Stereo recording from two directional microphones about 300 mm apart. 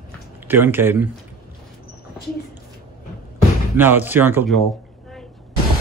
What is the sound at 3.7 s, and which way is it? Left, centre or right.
Speech, centre.